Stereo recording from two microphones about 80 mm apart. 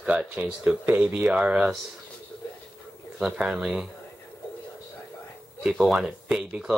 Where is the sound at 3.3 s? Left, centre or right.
Centre.